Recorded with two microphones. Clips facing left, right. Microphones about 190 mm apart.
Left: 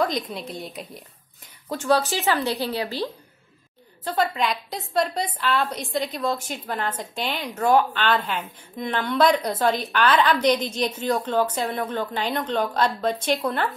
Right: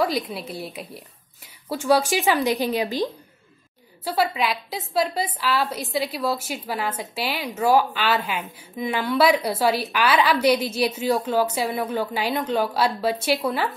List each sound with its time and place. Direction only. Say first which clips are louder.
0.0 s a woman's voice: right 1 dB; 5° right (ahead or behind)